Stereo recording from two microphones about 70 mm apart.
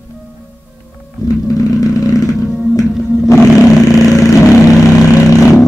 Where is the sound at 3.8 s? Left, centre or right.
Left.